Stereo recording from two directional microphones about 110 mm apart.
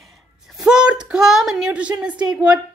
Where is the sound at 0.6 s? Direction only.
5° right (ahead or behind).